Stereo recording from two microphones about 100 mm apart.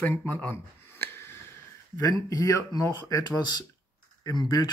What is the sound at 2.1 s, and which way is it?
Speech, 40° left (ahead or behind).